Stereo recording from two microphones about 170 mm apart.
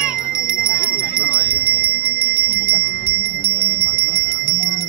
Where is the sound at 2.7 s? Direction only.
60° left (ahead or behind).